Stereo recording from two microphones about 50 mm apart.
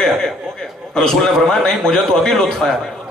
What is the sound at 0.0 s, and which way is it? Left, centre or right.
Chuckle, centre.